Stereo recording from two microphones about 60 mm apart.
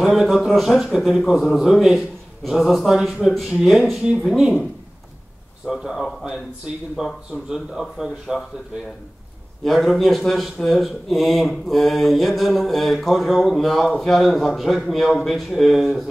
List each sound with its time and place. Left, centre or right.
0.0 s speech: centre
5.7 s speech: centre
9.7 s speech: centre